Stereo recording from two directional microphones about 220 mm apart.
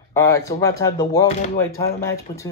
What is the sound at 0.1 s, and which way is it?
Speech, 10° left (ahead or behind).